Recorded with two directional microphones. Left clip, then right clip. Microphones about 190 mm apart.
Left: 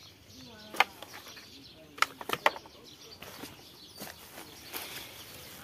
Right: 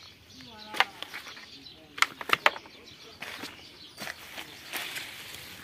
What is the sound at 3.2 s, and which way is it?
Bird flight, 25° right (ahead or behind).